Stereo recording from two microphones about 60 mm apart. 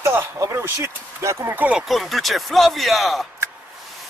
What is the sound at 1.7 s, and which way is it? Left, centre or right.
Speech, centre.